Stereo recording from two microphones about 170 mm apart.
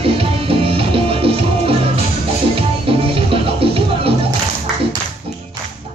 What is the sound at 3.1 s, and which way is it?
Music, 30° right (ahead or behind).